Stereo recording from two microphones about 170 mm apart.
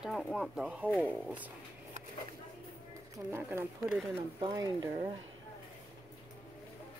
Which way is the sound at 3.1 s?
15° right (ahead or behind).